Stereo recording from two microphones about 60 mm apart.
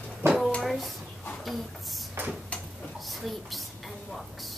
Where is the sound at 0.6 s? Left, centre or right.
Centre.